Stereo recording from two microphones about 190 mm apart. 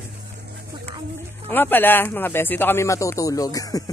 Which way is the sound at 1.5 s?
10° left (ahead or behind).